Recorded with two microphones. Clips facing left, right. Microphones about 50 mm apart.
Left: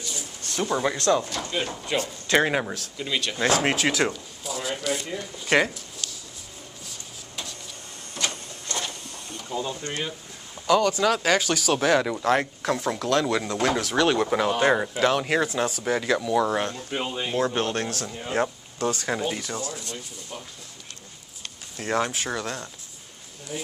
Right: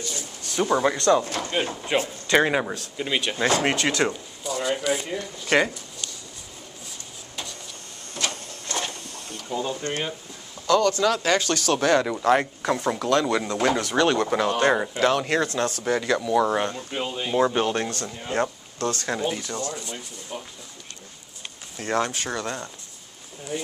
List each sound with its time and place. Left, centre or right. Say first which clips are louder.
0.5 s a man's voice: right 4 dB; centre
1.2 s speech: right 3 dB; right
1.6 s a man's voice: right 2 dB; centre
2.2 s speech: right 1 dB; centre
3.0 s speech: right 3 dB; centre
3.3 s speech: left 1 dB; centre
5.4 s speech: even; centre
8.3 s printer: right 2 dB; centre
9.5 s a man's voice: right 2 dB; centre
10.7 s speech: right 1 dB; centre
17.4 s speech: right 4 dB; centre
21.7 s speech: right 1 dB; centre